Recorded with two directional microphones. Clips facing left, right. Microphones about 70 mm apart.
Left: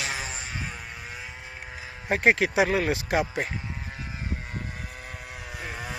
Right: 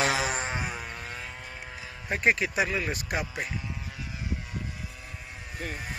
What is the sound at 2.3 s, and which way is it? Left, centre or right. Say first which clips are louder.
Speech: left 5 dB; left.